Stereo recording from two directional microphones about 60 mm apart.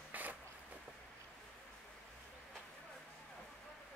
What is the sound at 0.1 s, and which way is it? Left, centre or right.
Zipper, right.